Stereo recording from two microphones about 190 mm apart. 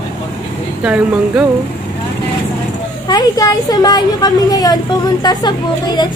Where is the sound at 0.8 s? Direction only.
5° right (ahead or behind).